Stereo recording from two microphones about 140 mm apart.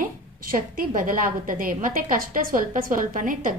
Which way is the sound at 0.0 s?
90° right.